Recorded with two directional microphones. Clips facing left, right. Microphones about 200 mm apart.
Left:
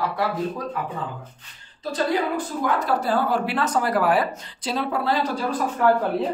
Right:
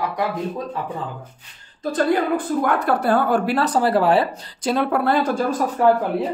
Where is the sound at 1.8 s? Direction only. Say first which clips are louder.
Right 4 dB; 55° right (ahead or behind).